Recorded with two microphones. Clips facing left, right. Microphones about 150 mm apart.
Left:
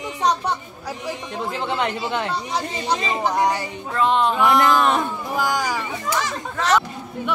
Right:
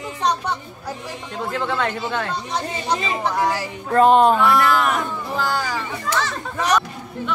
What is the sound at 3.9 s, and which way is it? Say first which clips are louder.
Speech: right 6 dB; 45° right (ahead or behind).